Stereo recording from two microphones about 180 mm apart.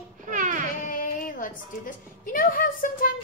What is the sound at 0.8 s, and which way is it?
A woman's voice, 50° left (ahead or behind).